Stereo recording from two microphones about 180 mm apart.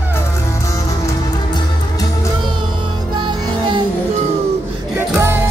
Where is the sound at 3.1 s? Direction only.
25° right (ahead or behind).